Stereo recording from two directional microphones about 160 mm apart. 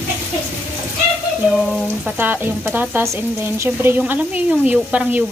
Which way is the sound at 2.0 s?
10° right (ahead or behind).